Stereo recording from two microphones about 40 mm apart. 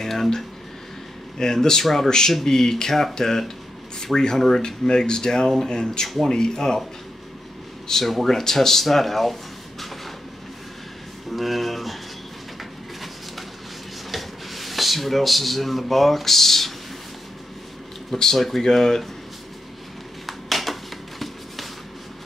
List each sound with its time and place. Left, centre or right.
0.0 s a sound: centre
1.4 s speech: centre
7.9 s speech: centre
11.2 s speech: centre
14.1 s speech: centre
18.1 s speech: centre
20.2 s a sound: centre